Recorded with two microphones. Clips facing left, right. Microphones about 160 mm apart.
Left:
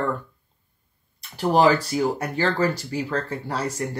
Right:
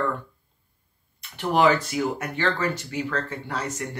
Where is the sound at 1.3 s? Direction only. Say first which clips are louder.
Left 2 dB; 35° left (ahead or behind).